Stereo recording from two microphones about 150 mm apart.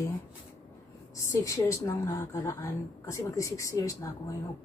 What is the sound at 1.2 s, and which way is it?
A woman's voice, 20° left (ahead or behind).